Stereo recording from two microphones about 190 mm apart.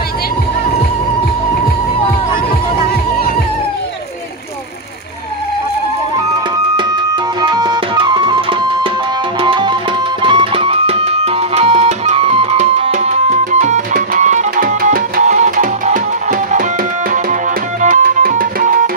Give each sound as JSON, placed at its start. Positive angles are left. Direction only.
{"t": 7.4, "sound": "music", "side_deg": -20}
{"t": 17.8, "sound": "tabla", "side_deg": -40}